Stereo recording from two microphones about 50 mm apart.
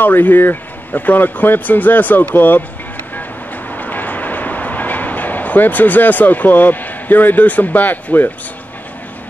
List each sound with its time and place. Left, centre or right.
0.0 s speech: left
3.7 s train: left